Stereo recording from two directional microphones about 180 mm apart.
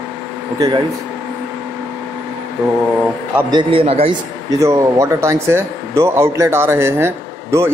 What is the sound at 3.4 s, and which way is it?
Speech, 25° right (ahead or behind).